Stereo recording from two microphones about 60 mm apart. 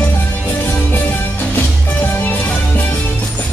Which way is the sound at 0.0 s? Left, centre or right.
Left.